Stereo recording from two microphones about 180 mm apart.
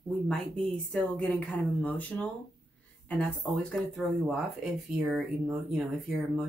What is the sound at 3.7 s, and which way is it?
Speech, centre (ahead or behind).